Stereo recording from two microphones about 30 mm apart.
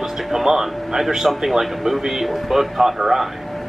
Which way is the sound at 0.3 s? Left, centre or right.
Centre.